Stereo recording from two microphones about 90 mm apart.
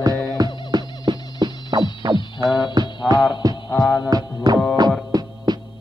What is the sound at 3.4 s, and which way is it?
Music, 45° right (ahead or behind).